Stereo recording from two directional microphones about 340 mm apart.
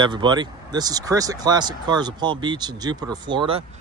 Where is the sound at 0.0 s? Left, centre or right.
Centre.